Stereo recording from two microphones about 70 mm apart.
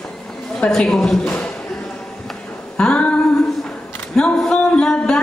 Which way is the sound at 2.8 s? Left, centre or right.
Centre.